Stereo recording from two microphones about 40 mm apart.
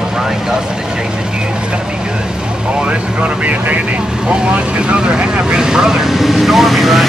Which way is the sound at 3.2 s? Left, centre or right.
Right.